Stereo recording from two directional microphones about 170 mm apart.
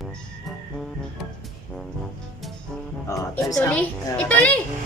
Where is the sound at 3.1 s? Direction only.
20° left (ahead or behind).